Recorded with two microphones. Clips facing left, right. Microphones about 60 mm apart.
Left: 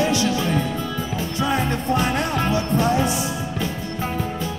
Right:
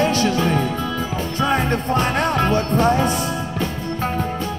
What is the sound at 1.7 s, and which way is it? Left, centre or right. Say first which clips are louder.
Speech: right 2 dB; right.